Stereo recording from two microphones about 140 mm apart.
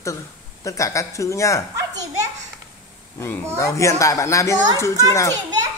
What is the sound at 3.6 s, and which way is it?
A man's voice, 20° left (ahead or behind).